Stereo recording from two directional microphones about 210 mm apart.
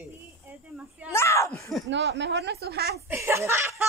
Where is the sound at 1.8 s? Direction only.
55° right (ahead or behind).